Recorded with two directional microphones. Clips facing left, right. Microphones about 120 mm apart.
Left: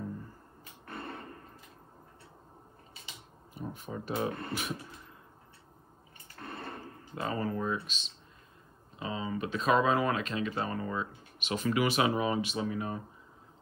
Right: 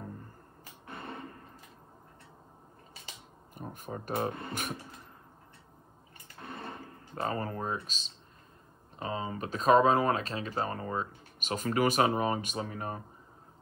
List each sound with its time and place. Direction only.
3.5 s speech: 50° right (ahead or behind)
6.4 s a sound: 10° right (ahead or behind)
7.2 s speech: 40° right (ahead or behind)